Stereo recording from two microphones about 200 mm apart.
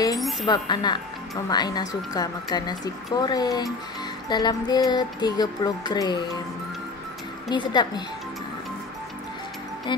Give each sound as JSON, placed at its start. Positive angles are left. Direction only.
{"t": 0.5, "sound": "speech", "side_deg": 20}
{"t": 7.4, "sound": "speech", "side_deg": 20}
{"t": 9.9, "sound": "speech", "side_deg": 25}